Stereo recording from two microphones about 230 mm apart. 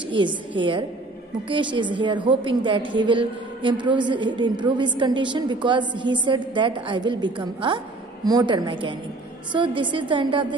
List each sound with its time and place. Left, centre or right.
0.1 s a woman's voice: right